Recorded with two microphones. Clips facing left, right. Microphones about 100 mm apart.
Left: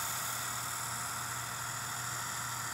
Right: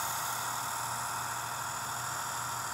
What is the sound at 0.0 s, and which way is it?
Vehicle, 20° right (ahead or behind).